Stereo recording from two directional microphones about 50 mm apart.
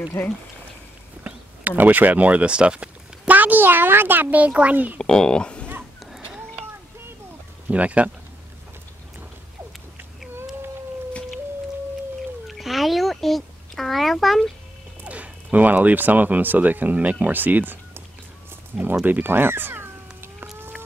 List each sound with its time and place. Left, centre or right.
0.2 s speech: left
1.2 s speech: right
4.9 s speech: centre
7.6 s speech: right
12.4 s a sound: centre
15.0 s speech: right
18.7 s speech: centre
19.0 s speech: right